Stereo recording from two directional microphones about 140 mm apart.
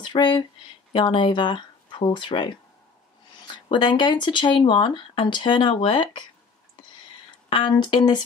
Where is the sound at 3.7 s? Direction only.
35° left (ahead or behind).